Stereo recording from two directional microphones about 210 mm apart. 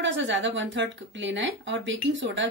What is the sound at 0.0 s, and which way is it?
Speech, 60° right (ahead or behind).